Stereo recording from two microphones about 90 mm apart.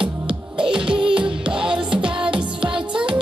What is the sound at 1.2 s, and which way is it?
Music, 10° right (ahead or behind).